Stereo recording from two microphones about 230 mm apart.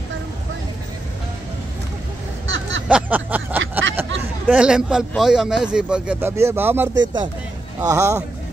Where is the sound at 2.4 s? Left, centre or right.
Right.